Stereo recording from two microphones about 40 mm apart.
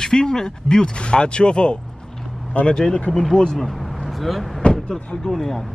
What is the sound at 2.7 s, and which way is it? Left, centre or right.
Speech, centre.